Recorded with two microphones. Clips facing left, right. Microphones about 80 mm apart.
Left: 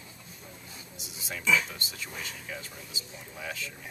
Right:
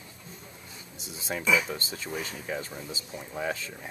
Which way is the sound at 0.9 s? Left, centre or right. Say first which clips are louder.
Right 7 dB; right.